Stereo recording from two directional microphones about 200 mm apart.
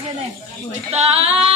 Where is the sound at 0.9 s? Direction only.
30° right (ahead or behind).